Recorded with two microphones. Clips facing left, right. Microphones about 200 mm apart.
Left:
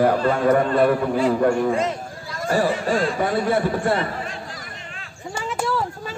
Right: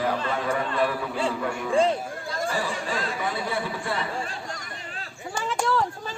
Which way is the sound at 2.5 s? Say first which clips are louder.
Left 12 dB; 50° left (ahead or behind).